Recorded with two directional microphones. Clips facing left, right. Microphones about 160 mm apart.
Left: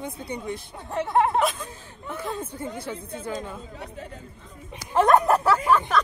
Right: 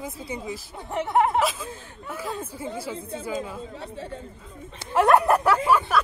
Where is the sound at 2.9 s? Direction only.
25° right (ahead or behind).